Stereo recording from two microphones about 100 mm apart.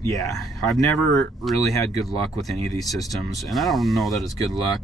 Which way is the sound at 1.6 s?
35° left (ahead or behind).